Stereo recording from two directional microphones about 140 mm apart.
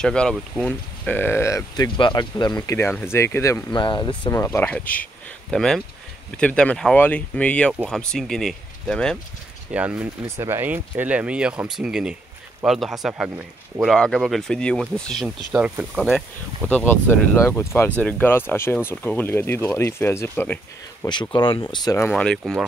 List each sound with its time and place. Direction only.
0.0 s speech: 5° left (ahead or behind)
2.0 s speech: 35° left (ahead or behind); by 3.6 s 15° left (ahead or behind)
3.7 s speech: 35° left (ahead or behind)
4.3 s speech: 20° left (ahead or behind)
9.7 s speech: 10° right (ahead or behind)
10.2 s speech: 20° right (ahead or behind); by 15.2 s 5° left (ahead or behind)
15.2 s speech: 5° right (ahead or behind)
16.6 s speech: 15° left (ahead or behind)
21.0 s speech: 35° left (ahead or behind)
22.1 s speech: 5° left (ahead or behind)
22.4 s speech: 5° right (ahead or behind)